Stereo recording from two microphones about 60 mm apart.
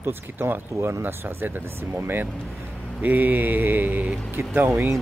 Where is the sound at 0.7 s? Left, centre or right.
Right.